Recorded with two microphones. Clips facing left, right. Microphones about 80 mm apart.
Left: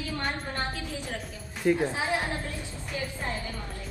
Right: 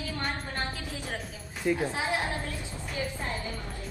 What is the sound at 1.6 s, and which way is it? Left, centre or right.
Speech, left.